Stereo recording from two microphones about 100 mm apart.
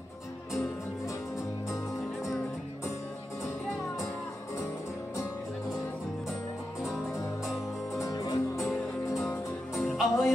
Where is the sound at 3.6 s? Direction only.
Centre (ahead or behind).